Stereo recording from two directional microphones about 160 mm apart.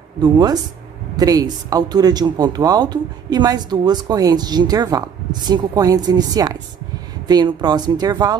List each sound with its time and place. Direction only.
0.2 s speech: 25° right (ahead or behind)